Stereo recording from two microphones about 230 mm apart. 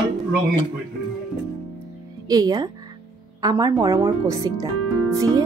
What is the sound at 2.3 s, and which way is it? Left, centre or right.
Speech, centre.